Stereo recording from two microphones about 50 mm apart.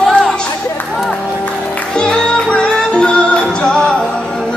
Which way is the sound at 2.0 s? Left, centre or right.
Centre.